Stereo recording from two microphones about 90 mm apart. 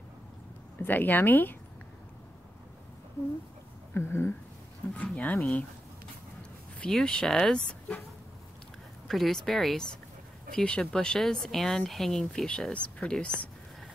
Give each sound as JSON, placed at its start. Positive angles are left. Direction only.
{"t": 0.7, "sound": "speech", "side_deg": 20}
{"t": 3.9, "sound": "speech", "side_deg": 25}
{"t": 4.9, "sound": "speech", "side_deg": 15}
{"t": 6.9, "sound": "speech", "side_deg": 5}
{"t": 9.0, "sound": "speech", "side_deg": 0}